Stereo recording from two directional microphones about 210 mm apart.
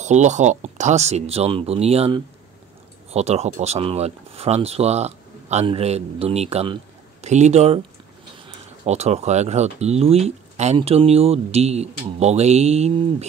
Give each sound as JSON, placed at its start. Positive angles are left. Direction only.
{"t": 0.0, "sound": "speech", "side_deg": -35}